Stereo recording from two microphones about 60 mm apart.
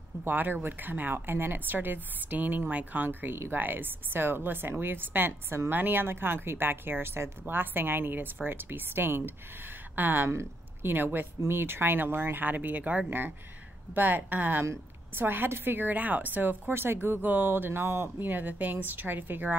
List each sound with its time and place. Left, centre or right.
0.2 s speech: right